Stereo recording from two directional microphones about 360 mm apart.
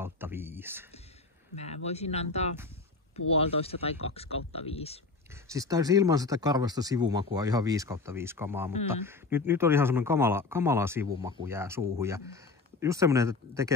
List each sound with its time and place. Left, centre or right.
0.0 s speech: centre
1.9 s speech: centre
5.3 s speech: centre